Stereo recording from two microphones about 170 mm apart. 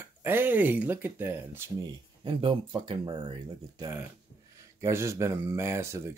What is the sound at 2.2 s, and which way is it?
Speech, 30° right (ahead or behind).